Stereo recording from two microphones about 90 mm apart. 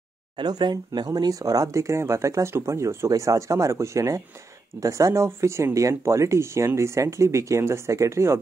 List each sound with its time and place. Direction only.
0.4 s speech: 55° right (ahead or behind); by 8.4 s 30° right (ahead or behind)